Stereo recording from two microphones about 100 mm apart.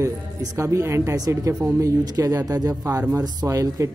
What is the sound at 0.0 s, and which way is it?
Speech, 30° right (ahead or behind).